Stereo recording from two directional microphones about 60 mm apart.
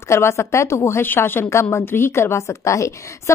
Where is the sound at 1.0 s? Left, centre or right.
Left.